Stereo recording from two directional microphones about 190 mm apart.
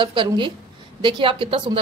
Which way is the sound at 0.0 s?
25° right (ahead or behind).